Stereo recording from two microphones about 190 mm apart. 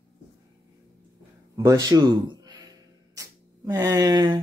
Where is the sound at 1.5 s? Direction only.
15° right (ahead or behind).